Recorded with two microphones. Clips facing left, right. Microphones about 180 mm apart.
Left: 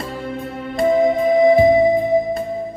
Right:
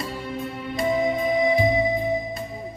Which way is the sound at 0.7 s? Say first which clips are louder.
Left 8 dB; 50° left (ahead or behind).